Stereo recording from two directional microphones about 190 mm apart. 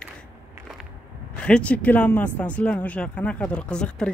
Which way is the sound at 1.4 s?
5° left (ahead or behind).